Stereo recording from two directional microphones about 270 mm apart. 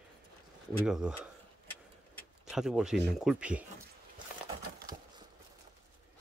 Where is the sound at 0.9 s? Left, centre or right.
Centre.